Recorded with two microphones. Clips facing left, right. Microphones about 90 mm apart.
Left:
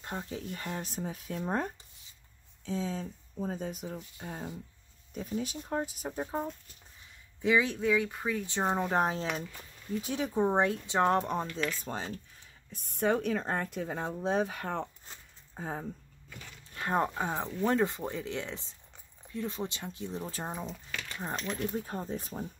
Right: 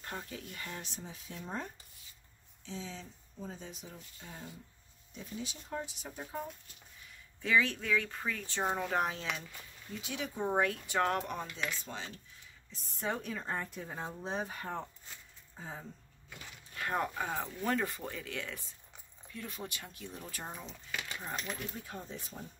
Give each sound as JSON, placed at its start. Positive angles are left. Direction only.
{"t": 0.0, "sound": "speech", "side_deg": 20}
{"t": 2.6, "sound": "speech", "side_deg": 45}
{"t": 7.4, "sound": "speech", "side_deg": 20}
{"t": 10.4, "sound": "speech", "side_deg": 25}
{"t": 11.8, "sound": "speech", "side_deg": 40}
{"t": 12.7, "sound": "speech", "side_deg": 60}
{"t": 15.0, "sound": "a sound", "side_deg": 50}
{"t": 16.7, "sound": "speech", "side_deg": 25}
{"t": 21.4, "sound": "speech", "side_deg": -5}
{"t": 21.7, "sound": "speech", "side_deg": 40}